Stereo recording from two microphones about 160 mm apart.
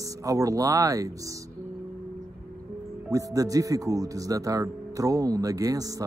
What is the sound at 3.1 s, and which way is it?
Speech, 20° right (ahead or behind).